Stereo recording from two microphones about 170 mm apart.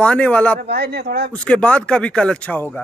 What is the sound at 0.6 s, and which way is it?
Speech, 75° right (ahead or behind).